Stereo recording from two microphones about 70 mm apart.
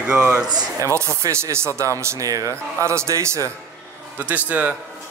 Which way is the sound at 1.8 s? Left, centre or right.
Right.